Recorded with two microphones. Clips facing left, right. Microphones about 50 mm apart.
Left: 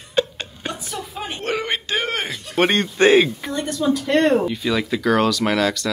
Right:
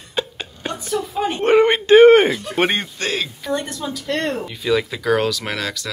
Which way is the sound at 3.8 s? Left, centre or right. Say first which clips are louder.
Left 9 dB; centre.